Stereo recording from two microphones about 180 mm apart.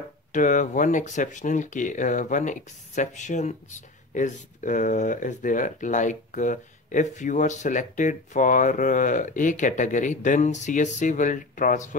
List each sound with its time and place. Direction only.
0.3 s speech: 45° left (ahead or behind)